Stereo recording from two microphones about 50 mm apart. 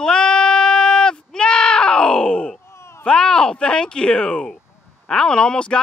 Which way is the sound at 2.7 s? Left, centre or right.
Left.